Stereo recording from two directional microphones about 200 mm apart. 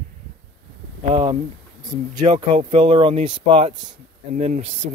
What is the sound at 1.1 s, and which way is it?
Speech, 30° right (ahead or behind).